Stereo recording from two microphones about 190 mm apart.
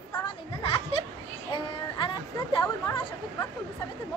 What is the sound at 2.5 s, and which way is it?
Chatter, 25° left (ahead or behind).